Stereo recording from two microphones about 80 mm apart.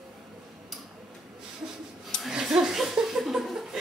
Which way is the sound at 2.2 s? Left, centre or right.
Centre.